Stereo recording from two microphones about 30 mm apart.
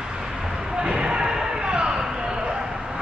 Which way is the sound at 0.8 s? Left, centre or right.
Right.